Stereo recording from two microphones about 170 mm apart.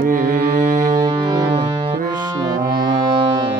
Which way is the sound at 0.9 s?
25° right (ahead or behind).